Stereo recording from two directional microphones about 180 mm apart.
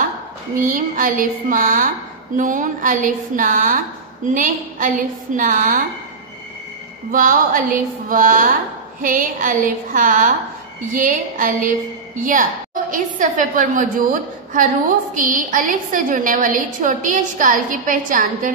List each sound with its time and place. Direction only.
0.6 s a woman's voice: 50° right (ahead or behind)
7.1 s a woman's voice: 50° right (ahead or behind)
15.1 s a woman's voice: 50° right (ahead or behind)